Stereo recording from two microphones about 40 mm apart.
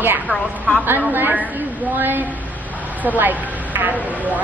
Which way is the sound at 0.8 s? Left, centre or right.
Right.